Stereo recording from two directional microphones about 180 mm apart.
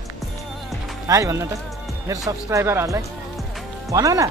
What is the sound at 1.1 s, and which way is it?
Speech, 15° right (ahead or behind).